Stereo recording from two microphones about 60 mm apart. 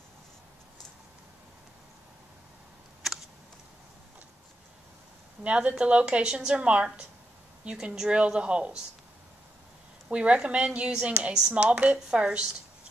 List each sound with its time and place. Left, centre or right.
3.0 s a sound: centre
5.4 s a woman's voice: centre
10.0 s a woman's voice: centre